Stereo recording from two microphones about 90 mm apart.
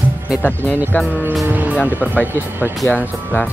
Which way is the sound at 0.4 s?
20° left (ahead or behind).